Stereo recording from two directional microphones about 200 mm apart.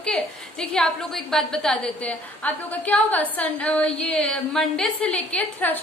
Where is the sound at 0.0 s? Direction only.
5° left (ahead or behind).